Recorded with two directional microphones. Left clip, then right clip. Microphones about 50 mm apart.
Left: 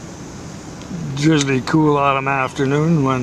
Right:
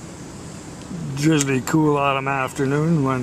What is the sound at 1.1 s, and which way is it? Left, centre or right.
Speech, right.